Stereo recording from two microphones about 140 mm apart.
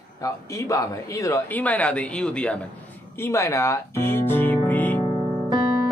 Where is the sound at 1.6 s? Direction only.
10° left (ahead or behind).